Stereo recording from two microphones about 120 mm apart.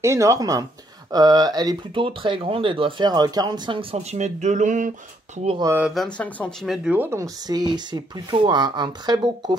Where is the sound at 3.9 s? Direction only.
70° right (ahead or behind); by 4.9 s 90° right.